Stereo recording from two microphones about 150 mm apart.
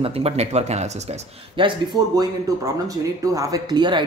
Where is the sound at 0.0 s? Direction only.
45° right (ahead or behind).